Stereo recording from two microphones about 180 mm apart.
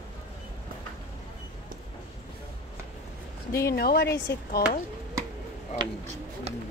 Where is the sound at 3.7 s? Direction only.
60° left (ahead or behind).